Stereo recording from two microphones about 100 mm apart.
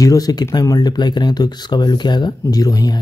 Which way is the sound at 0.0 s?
35° left (ahead or behind).